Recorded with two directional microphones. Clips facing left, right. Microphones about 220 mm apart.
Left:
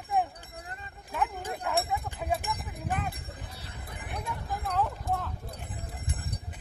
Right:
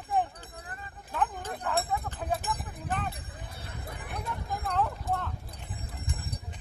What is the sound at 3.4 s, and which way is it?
Bell, 55° right (ahead or behind).